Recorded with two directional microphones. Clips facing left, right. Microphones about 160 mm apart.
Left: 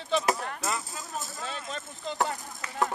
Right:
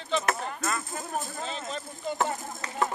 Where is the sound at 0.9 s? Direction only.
55° right (ahead or behind).